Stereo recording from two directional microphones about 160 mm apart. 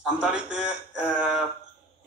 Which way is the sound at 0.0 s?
5° right (ahead or behind).